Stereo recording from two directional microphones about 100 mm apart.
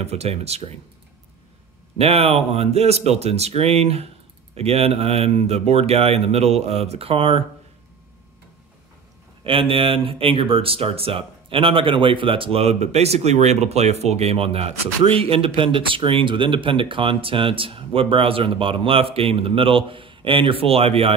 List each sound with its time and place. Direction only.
0.0 s speech: 90° right
2.0 s speech: 80° right
9.4 s speech: 65° right (ahead or behind)